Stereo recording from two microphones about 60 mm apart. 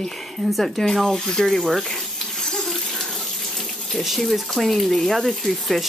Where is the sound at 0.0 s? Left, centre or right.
Centre.